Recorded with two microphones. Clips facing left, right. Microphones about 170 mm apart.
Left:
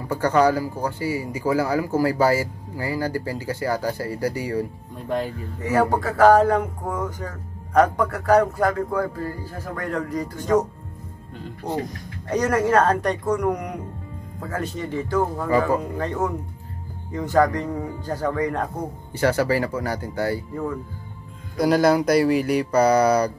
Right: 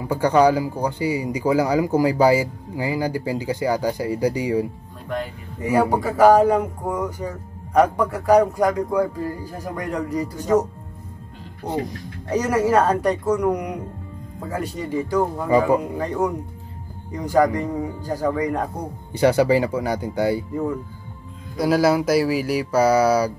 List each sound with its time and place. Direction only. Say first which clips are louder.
0.0 s a man's voice: right 2 dB; 10° right (ahead or behind)
5.0 s speech: left 2 dB; 30° left (ahead or behind)
5.6 s a man's voice: right 1 dB; 15° right (ahead or behind)
11.6 s a man's voice: right 2 dB; 10° right (ahead or behind)
21.5 s a sound: even; 5° right (ahead or behind)